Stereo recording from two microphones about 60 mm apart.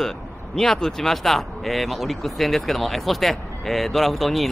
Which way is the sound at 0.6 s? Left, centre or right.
Centre.